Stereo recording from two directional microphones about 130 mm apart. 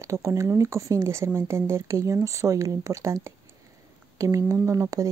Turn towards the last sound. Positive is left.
turn(degrees=-25)  # may be behind; listen again after turning